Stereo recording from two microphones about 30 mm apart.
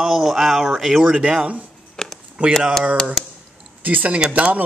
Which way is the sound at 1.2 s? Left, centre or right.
Right.